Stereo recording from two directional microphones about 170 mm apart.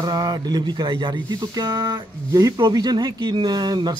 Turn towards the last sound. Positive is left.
turn(degrees=-25)  # may be behind; listen again after turning